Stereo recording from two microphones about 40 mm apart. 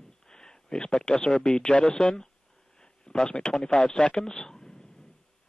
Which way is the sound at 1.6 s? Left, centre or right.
Left.